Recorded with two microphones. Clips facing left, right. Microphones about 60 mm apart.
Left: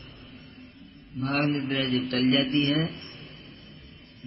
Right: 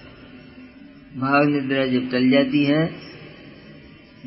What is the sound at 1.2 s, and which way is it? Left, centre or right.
A man's voice, right.